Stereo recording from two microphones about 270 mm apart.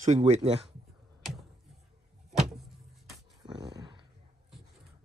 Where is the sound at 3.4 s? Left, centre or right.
Centre.